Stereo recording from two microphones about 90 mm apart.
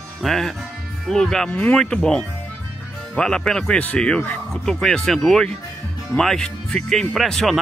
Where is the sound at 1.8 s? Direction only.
5° left (ahead or behind).